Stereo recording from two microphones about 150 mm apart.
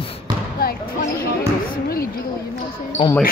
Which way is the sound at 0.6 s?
75° left (ahead or behind).